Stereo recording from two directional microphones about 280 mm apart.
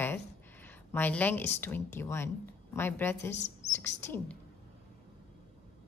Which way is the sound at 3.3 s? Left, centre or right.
Left.